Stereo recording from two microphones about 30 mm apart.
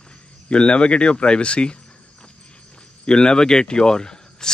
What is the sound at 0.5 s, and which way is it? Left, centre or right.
Speech, left.